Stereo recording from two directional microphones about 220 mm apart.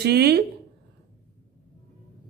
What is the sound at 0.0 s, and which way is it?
Speech, 45° right (ahead or behind).